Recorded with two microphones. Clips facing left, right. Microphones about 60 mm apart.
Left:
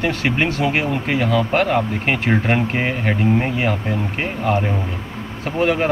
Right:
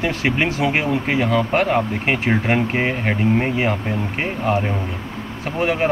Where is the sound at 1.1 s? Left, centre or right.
Right.